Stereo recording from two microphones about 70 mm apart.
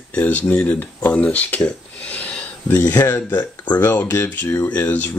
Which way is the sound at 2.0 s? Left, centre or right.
Centre.